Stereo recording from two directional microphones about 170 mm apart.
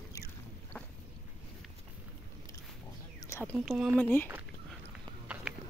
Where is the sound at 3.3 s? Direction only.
15° left (ahead or behind).